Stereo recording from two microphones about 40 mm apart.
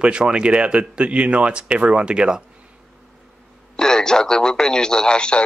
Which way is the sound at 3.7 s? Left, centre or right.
Centre.